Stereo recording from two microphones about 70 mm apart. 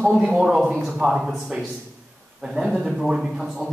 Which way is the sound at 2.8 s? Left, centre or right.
Centre.